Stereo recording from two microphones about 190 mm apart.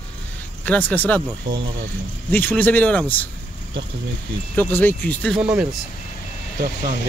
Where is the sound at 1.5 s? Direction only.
50° right (ahead or behind).